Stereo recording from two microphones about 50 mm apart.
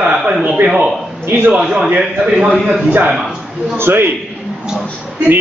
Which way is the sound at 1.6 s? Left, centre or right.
Centre.